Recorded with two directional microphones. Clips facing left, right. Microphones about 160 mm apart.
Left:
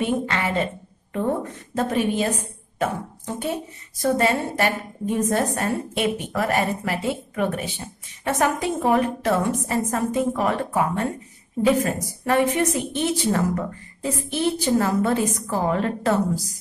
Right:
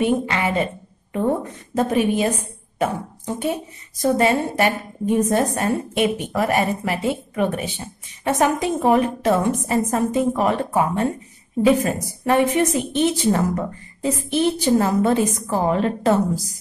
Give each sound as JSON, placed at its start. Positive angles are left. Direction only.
{"t": 0.0, "sound": "a woman's voice", "side_deg": -15}
{"t": 1.8, "sound": "a woman's voice", "side_deg": -15}
{"t": 4.0, "sound": "a woman's voice", "side_deg": -20}